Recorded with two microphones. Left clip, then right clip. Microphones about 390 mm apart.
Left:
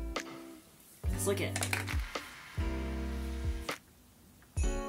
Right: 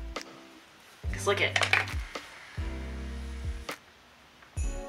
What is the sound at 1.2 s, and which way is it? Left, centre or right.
Speech, left.